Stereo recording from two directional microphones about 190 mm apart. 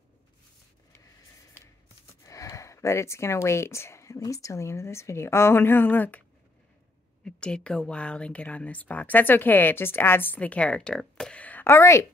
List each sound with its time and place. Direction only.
2.2 s speech: 15° left (ahead or behind)
7.2 s speech: 5° left (ahead or behind)